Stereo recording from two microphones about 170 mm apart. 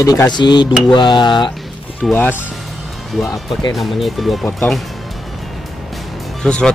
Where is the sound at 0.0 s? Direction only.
20° left (ahead or behind).